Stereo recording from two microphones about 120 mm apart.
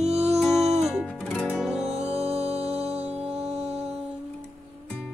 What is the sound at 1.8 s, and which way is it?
Music, 60° right (ahead or behind).